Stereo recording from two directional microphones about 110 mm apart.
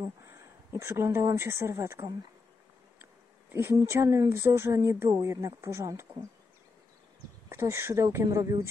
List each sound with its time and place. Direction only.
0.2 s speech: 25° right (ahead or behind)
3.5 s speech: 25° right (ahead or behind)
7.4 s speech: 25° right (ahead or behind)